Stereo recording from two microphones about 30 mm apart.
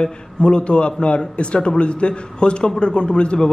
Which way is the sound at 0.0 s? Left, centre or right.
Left.